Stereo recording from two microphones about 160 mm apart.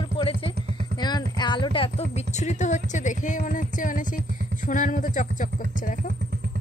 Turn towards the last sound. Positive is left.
turn(degrees=55)  # may be behind; listen again after turning